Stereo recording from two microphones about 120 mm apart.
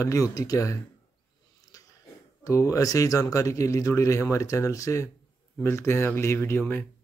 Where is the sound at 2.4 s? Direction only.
25° left (ahead or behind).